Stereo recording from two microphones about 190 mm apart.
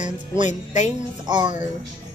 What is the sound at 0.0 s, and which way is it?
Music, 40° left (ahead or behind).